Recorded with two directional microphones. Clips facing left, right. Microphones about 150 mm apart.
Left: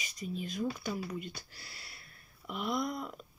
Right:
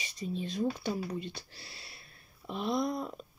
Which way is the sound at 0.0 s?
30° right (ahead or behind).